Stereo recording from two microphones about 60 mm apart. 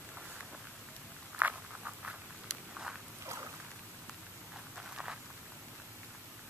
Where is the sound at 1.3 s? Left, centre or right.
Right.